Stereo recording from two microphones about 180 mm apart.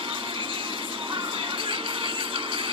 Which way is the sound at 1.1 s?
30° right (ahead or behind).